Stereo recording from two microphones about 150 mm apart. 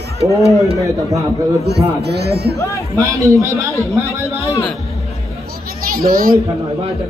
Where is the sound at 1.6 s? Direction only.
90° right.